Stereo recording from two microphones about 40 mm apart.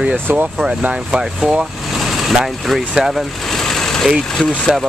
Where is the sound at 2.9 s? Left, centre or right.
Centre.